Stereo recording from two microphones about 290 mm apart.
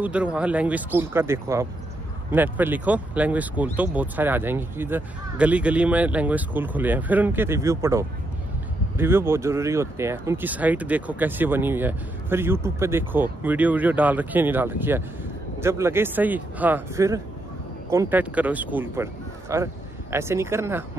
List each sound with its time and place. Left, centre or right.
0.0 s speech: centre